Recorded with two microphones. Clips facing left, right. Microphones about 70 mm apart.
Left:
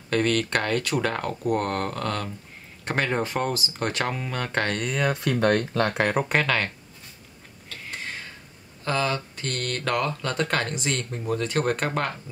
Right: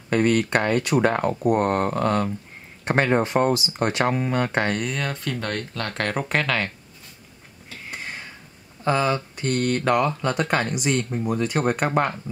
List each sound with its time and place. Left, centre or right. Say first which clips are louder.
0.1 s speech: right 3 dB; centre
4.5 s speech: right 2 dB; centre
5.1 s speech: left 6 dB; left
5.9 s speech: left 1 dB; centre
8.8 s speech: right 4 dB; centre